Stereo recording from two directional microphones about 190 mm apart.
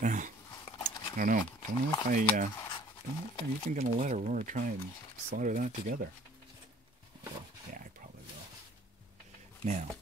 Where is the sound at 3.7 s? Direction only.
40° right (ahead or behind).